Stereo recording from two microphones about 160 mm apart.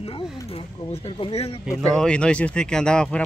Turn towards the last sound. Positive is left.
turn(degrees=5)  # may be behind; listen again after turning